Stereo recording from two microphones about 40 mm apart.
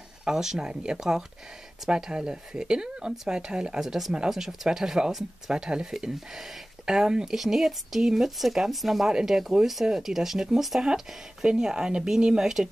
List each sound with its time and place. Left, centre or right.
0.2 s speech: centre
3.8 s speech: centre
9.0 s speech: centre